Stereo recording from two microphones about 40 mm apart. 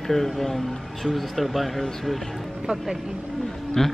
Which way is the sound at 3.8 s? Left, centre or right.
Centre.